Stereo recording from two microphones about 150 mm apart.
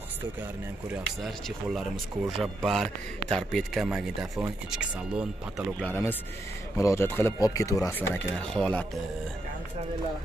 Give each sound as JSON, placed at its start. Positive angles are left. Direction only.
{"t": 1.2, "sound": "speech", "side_deg": 0}
{"t": 5.8, "sound": "speech", "side_deg": 10}
{"t": 8.1, "sound": "speech", "side_deg": 5}